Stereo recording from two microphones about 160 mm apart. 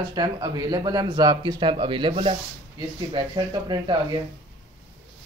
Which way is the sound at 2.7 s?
25° right (ahead or behind).